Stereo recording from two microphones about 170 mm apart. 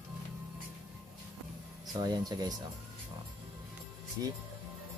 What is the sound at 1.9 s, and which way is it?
Speech, 25° right (ahead or behind).